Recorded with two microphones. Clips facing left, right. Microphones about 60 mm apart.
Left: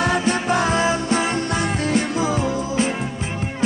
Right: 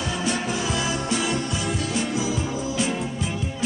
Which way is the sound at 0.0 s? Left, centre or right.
Left.